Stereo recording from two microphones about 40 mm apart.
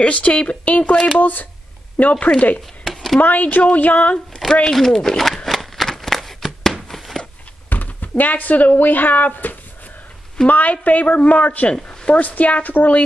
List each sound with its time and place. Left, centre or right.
0.0 s a woman's voice: left
0.9 s speech: left
1.2 s a woman's voice: left
2.8 s a sound: centre
3.2 s a woman's voice: left
4.7 s shuffling cards: centre
7.7 s a sound: left
8.2 s a woman's voice: left
11.7 s speech: left
12.2 s a woman's voice: left